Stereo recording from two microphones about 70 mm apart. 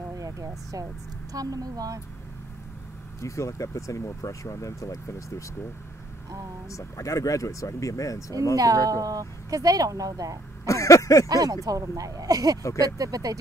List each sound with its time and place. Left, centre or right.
0.2 s vehicle: right
1.3 s speech: right
3.2 s speech: left
6.7 s speech: left
8.5 s speech: right
10.6 s a sound: left
11.2 s speech: right